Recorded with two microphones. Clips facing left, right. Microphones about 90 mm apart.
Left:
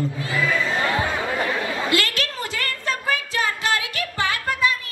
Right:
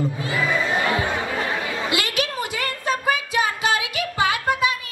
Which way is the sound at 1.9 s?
15° right (ahead or behind).